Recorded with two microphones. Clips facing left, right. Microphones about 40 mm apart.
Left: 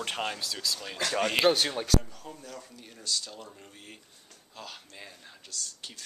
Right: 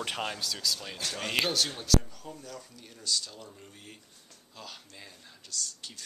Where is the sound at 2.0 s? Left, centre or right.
Centre.